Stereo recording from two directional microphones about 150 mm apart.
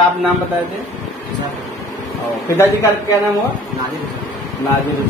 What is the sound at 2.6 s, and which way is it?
Speech, 20° left (ahead or behind).